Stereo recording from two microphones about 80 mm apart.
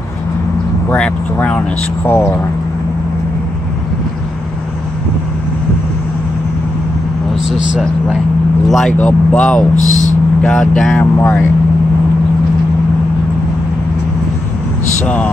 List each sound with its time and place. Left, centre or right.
0.8 s speech: centre
2.0 s speech: left
8.6 s speech: centre
8.9 s speech: left
11.0 s speech: left